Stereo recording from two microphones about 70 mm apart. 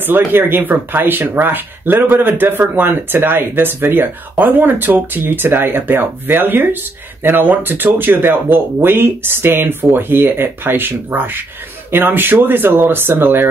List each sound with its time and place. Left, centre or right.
0.0 s speech: right